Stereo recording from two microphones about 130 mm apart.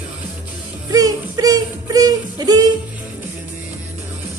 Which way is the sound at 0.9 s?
30° right (ahead or behind).